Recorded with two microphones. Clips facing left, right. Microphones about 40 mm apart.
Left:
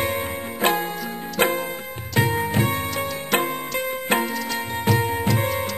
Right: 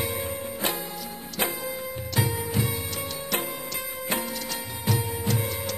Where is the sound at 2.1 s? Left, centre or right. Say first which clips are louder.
Left 7 dB; left.